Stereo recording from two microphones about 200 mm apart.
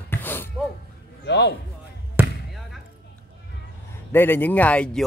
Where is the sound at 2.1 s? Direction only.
Centre (ahead or behind).